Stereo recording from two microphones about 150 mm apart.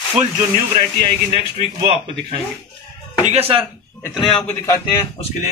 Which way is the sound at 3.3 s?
40° right (ahead or behind).